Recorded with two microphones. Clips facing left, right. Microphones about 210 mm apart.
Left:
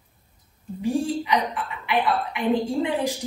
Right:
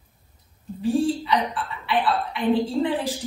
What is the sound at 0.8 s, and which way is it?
A woman's voice, 15° left (ahead or behind).